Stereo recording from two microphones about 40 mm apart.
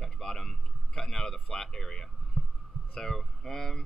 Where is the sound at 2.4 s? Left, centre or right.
Centre.